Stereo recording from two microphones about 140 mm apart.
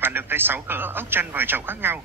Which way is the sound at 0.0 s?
15° right (ahead or behind).